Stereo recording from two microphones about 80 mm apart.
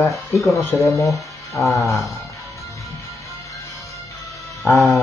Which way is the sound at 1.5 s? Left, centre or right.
Left.